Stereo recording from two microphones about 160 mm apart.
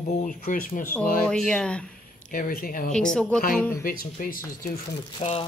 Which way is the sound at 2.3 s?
65° left (ahead or behind).